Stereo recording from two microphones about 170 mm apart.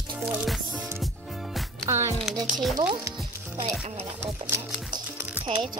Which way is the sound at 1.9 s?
15° right (ahead or behind).